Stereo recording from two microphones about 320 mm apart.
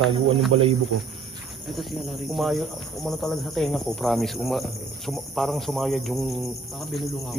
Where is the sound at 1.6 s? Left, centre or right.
Centre.